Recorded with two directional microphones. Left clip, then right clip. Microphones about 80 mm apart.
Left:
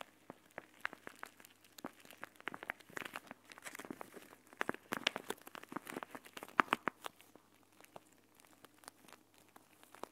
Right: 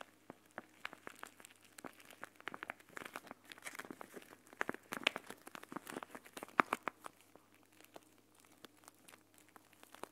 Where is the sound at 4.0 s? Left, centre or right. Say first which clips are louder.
Left 1 dB; centre.